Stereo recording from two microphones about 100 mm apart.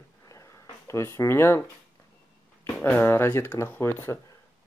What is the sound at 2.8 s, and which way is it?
Speech, 20° left (ahead or behind).